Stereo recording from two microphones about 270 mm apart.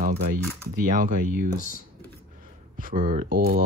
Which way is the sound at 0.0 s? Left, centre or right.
Right.